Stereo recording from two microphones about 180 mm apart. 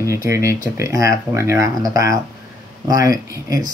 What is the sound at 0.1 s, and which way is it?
Speech, 15° right (ahead or behind).